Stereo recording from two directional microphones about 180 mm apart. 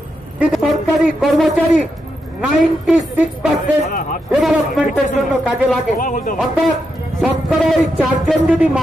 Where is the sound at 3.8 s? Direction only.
50° left (ahead or behind).